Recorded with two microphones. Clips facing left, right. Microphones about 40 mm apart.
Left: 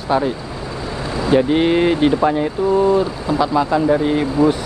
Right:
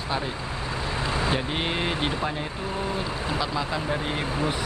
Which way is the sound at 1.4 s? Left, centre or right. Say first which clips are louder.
Left 13 dB; centre.